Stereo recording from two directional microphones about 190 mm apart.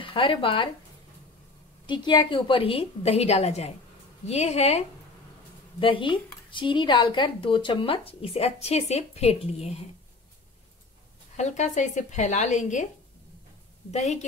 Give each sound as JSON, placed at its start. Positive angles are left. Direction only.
{"t": 0.0, "sound": "speech", "side_deg": 25}
{"t": 1.9, "sound": "a woman's voice", "side_deg": 25}
{"t": 11.3, "sound": "a woman's voice", "side_deg": 40}
{"t": 13.9, "sound": "a woman's voice", "side_deg": 35}